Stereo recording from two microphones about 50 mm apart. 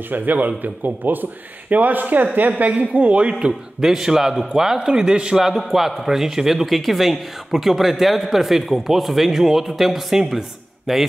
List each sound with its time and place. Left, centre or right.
0.1 s a man's voice: right; by 3.9 s centre
3.9 s a man's voice: centre